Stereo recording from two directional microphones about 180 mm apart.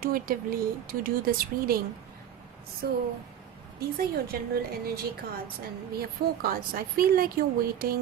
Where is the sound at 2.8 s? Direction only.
60° right (ahead or behind).